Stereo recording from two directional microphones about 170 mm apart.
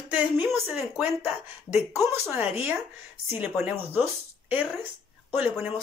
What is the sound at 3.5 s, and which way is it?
A woman's voice, 10° right (ahead or behind).